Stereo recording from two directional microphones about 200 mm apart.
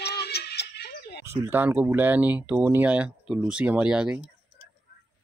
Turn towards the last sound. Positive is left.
turn(degrees=-5)  # may be behind; listen again after turning